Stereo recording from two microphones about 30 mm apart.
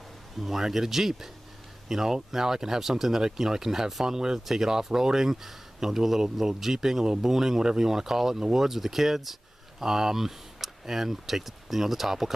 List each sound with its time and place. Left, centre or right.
0.4 s speech: centre